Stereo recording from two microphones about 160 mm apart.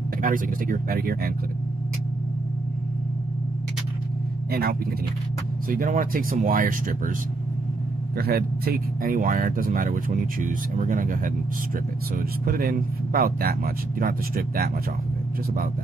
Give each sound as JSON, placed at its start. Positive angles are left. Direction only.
{"t": 0.2, "sound": "speech", "side_deg": -60}
{"t": 4.5, "sound": "speech", "side_deg": -70}
{"t": 5.7, "sound": "speech", "side_deg": -60}
{"t": 8.2, "sound": "speech", "side_deg": -75}
{"t": 12.4, "sound": "speech", "side_deg": -65}